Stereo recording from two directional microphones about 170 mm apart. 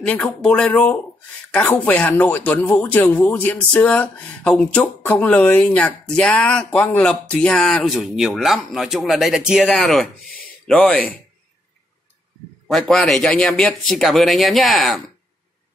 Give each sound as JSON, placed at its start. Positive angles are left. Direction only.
{"t": 0.0, "sound": "speech", "side_deg": 5}
{"t": 12.6, "sound": "speech", "side_deg": 0}